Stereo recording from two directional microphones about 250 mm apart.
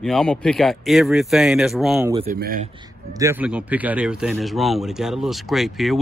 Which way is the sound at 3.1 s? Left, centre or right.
Centre.